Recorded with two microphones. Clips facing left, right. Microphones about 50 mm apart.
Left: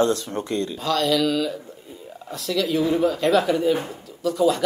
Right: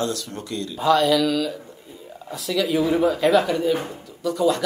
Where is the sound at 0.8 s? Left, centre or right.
Centre.